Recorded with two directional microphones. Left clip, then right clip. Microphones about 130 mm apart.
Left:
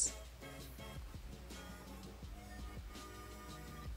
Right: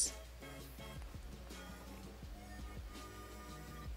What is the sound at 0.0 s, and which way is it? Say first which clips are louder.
Music: even; centre (ahead or behind).